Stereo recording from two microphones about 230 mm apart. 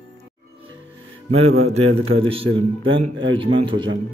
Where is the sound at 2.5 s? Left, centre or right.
Right.